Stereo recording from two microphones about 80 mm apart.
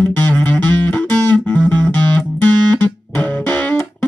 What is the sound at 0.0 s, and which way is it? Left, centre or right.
Music, left.